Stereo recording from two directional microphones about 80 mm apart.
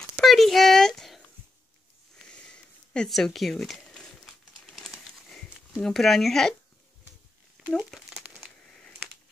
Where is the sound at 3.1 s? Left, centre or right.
Centre.